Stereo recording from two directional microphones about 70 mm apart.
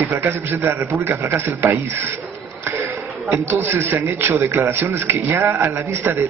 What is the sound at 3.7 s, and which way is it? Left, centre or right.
A man's voice, right.